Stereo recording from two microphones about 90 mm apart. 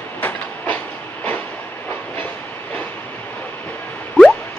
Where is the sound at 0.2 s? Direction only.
20° left (ahead or behind).